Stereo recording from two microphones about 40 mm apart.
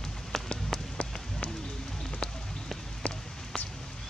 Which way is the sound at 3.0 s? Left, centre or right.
Left.